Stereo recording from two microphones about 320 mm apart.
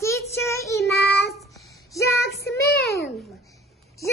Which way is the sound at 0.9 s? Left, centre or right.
Left.